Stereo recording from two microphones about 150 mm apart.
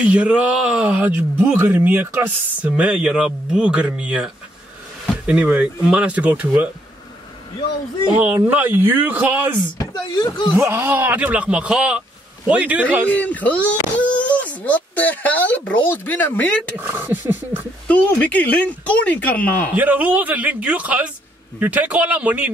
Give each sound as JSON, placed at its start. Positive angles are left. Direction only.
{"t": 0.0, "sound": "speech", "side_deg": -10}
{"t": 8.2, "sound": "speech", "side_deg": -15}
{"t": 9.8, "sound": "speech", "side_deg": 30}
{"t": 10.6, "sound": "speech", "side_deg": -15}
{"t": 13.1, "sound": "speech", "side_deg": 10}
{"t": 16.7, "sound": "speech", "side_deg": -15}
{"t": 17.8, "sound": "speech", "side_deg": 10}
{"t": 19.7, "sound": "speech", "side_deg": -10}